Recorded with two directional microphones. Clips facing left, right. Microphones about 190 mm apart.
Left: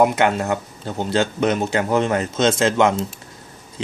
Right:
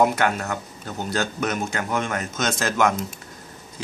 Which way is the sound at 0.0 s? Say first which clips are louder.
Left 4 dB; 20° left (ahead or behind).